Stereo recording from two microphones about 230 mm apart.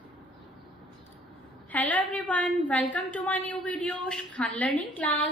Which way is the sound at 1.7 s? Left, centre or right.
Centre.